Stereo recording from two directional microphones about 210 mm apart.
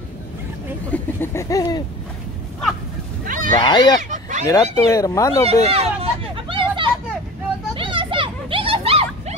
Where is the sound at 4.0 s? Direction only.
35° right (ahead or behind).